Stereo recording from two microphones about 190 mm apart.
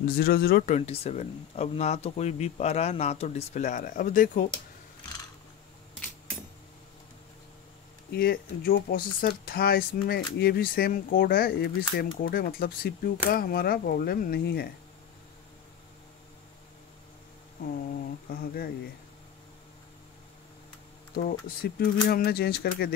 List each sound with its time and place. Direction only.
0.0 s speech: 50° left (ahead or behind)
0.7 s speech: 35° left (ahead or behind)
8.1 s speech: 50° left (ahead or behind)
18.3 s speech: 50° left (ahead or behind)
21.1 s speech: 55° left (ahead or behind)